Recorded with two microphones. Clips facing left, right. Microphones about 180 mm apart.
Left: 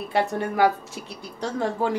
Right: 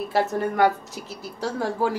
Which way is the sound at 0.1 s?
Centre (ahead or behind).